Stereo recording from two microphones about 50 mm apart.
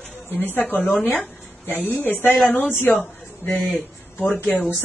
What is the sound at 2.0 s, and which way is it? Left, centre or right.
Speech, left.